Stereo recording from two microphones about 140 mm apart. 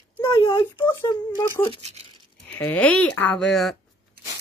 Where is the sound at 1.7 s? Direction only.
50° right (ahead or behind).